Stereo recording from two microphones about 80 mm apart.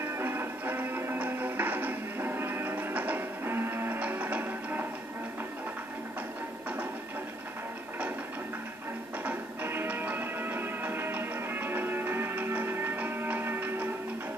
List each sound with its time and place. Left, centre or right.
0.0 s music: right
9.2 s music: right